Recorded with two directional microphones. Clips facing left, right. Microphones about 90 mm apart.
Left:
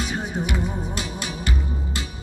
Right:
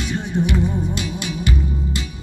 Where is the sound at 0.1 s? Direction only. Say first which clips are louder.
Right 5 dB; 10° left (ahead or behind).